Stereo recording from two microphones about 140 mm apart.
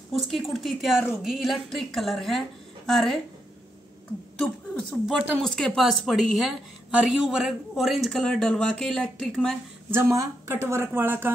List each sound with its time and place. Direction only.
0.1 s a woman's voice: centre (ahead or behind)
4.4 s a woman's voice: centre (ahead or behind)
9.8 s speech: 20° right (ahead or behind)